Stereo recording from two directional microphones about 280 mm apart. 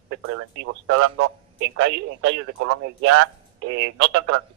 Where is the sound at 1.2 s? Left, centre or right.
Right.